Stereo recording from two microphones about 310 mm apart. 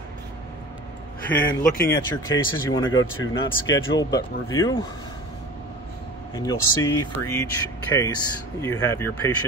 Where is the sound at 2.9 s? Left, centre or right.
Left.